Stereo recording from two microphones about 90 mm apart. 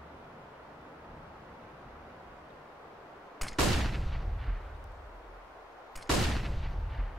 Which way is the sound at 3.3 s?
Centre (ahead or behind).